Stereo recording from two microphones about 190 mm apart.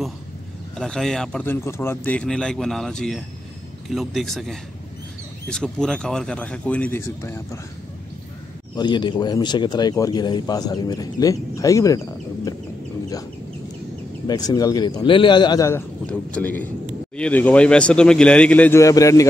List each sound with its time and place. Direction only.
0.7 s speech: 5° left (ahead or behind)
8.7 s speech: 25° left (ahead or behind)
14.2 s speech: 20° left (ahead or behind)
16.1 s speech: 5° left (ahead or behind)